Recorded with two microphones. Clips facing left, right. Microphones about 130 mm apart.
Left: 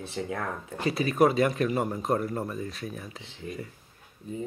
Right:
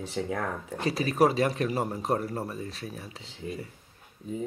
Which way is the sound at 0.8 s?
35° right (ahead or behind).